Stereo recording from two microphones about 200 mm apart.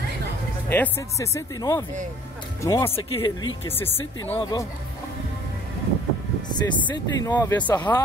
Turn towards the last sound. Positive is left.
turn(degrees=20)  # may be behind; listen again after turning